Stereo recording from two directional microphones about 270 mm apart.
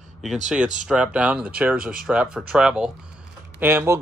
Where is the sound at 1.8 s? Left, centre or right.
Right.